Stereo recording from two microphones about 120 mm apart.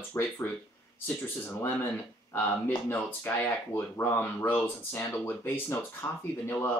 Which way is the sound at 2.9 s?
20° left (ahead or behind).